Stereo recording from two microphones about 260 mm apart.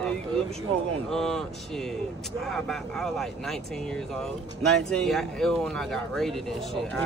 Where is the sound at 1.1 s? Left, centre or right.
Centre.